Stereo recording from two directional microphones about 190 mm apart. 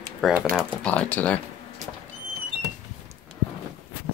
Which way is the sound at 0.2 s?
Centre (ahead or behind).